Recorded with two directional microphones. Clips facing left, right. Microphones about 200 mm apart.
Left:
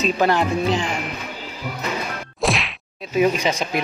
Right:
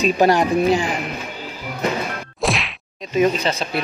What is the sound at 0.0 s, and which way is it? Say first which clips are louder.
Speech: right 3 dB; 15° right (ahead or behind).